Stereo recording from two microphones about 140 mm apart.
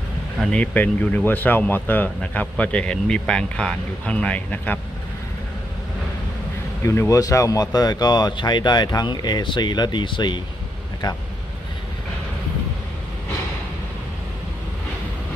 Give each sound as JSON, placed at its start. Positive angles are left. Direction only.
{"t": 0.4, "sound": "speech", "side_deg": 10}
{"t": 6.8, "sound": "speech", "side_deg": 20}